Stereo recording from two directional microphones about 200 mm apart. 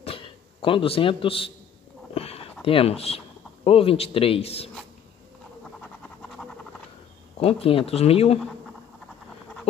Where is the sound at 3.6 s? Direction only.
30° left (ahead or behind).